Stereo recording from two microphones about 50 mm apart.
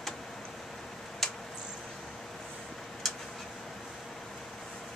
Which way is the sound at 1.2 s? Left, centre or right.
Centre.